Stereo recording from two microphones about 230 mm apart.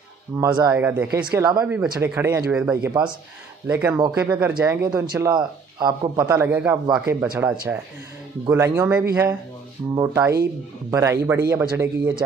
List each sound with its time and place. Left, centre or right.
0.4 s speech: centre
0.7 s a man's voice: centre
1.6 s a man's voice: centre
2.9 s speech: centre
3.6 s a man's voice: centre
5.0 s a man's voice: centre